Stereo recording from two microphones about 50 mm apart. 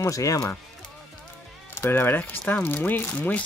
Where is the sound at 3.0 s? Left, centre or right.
Left.